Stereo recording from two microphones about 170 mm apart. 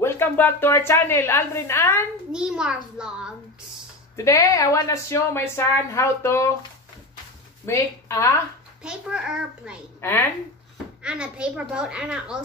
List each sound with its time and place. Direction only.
0.0 s speech: 15° left (ahead or behind)
2.3 s a child's voice: 5° right (ahead or behind)
4.2 s speech: 20° left (ahead or behind)
7.6 s speech: 15° left (ahead or behind)
8.8 s a child's voice: 5° right (ahead or behind)
11.0 s a child's voice: 5° right (ahead or behind)